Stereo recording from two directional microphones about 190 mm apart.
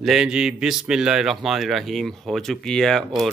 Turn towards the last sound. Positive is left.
turn(degrees=0)  # may be behind; listen again after turning